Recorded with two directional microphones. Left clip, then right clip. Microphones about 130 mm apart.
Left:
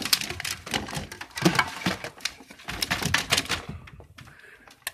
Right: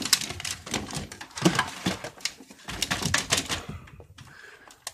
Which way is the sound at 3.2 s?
25° right (ahead or behind).